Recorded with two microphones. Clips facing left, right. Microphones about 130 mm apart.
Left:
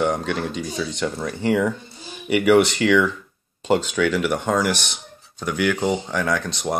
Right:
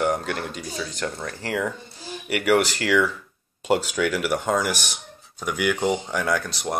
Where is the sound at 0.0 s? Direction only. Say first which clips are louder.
Left 2 dB; 5° right (ahead or behind).